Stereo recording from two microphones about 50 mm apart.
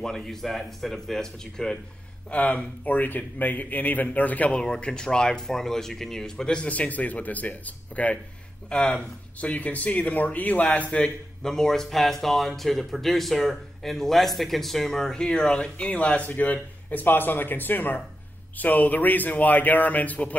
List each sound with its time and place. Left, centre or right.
0.0 s speech: centre
2.3 s a man's voice: left
4.6 s speech: centre
6.7 s a man's voice: left
9.5 s a man's voice: left
11.4 s a man's voice: centre; by 20.3 s left